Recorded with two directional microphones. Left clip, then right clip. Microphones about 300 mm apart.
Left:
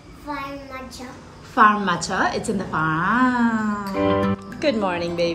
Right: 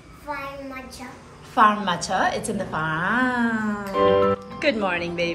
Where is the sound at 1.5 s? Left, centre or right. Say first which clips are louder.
Left 2 dB; centre.